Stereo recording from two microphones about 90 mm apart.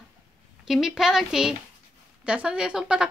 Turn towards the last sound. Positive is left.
turn(degrees=-10)  # may be behind; listen again after turning